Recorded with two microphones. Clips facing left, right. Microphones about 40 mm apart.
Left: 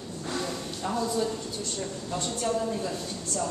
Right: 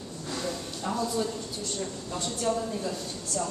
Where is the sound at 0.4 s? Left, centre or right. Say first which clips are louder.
Even; centre.